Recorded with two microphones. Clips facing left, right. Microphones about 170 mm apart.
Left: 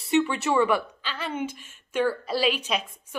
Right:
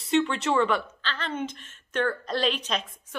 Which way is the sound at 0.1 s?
5° left (ahead or behind).